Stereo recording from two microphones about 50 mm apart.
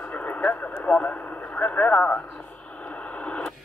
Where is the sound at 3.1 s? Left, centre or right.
Left.